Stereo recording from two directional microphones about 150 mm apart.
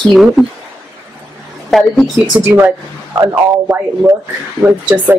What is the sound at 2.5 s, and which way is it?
Speech, 15° right (ahead or behind).